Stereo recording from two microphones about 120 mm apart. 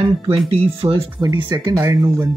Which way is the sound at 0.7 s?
50° right (ahead or behind).